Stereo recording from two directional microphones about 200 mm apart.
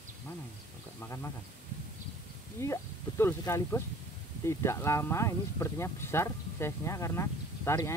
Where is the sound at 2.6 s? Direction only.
15° left (ahead or behind).